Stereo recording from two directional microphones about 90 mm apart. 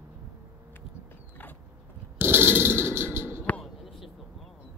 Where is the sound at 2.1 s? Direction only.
25° right (ahead or behind).